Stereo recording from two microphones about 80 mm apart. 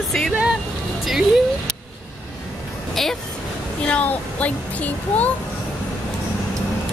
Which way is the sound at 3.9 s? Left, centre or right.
Centre.